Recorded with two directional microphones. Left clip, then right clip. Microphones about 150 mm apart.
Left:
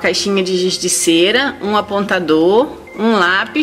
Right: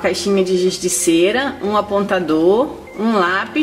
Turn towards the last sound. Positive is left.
turn(degrees=25)  # may be behind; listen again after turning